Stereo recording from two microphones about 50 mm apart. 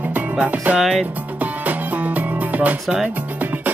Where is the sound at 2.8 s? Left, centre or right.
Centre.